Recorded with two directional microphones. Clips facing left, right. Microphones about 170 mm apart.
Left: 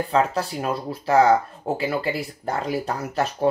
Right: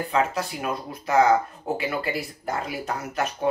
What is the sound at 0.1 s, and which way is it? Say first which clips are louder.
Speech: left 2 dB; 30° left (ahead or behind).